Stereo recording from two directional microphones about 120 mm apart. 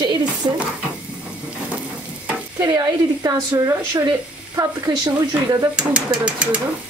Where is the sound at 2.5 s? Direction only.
35° right (ahead or behind).